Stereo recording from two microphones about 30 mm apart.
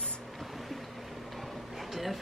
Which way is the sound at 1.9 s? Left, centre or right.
Centre.